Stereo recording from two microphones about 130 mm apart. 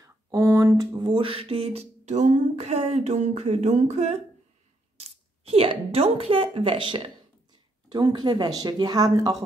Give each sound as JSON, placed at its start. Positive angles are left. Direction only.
{"t": 0.0, "sound": "speech", "side_deg": -25}